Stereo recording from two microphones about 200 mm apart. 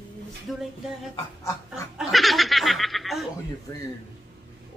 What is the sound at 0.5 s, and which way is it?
Snicker, centre (ahead or behind).